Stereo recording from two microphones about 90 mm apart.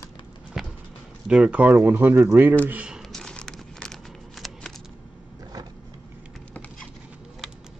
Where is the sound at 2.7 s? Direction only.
10° right (ahead or behind).